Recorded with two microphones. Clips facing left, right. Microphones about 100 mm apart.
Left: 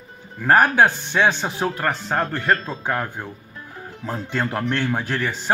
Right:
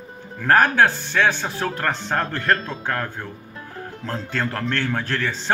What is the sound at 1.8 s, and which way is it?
A man's voice, 5° left (ahead or behind).